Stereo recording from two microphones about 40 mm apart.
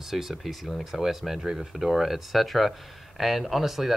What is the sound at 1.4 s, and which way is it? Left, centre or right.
Speech, right.